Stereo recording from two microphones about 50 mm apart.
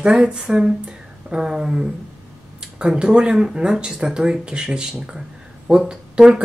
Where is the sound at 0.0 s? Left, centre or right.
Centre.